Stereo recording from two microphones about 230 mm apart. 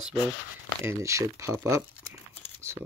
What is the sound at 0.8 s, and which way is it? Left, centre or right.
Speech, centre.